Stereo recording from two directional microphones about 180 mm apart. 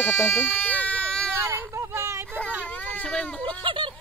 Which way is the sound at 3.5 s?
30° right (ahead or behind).